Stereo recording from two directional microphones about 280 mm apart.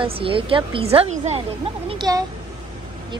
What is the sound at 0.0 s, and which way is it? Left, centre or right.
Speech, centre.